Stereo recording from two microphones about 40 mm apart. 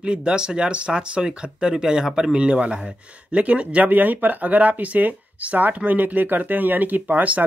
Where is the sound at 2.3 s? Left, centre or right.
Right.